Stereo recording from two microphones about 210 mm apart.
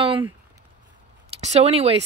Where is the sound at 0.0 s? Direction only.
25° right (ahead or behind).